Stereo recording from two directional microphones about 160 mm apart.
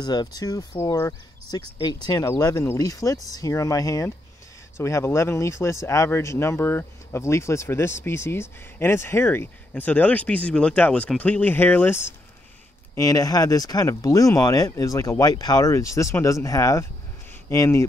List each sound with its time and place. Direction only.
0.0 s speech: 25° left (ahead or behind)